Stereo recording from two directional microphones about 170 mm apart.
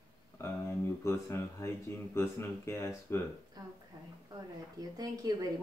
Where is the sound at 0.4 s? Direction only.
15° left (ahead or behind).